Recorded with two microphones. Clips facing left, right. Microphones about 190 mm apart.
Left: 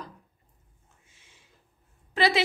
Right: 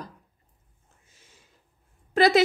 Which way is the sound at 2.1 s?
45° right (ahead or behind).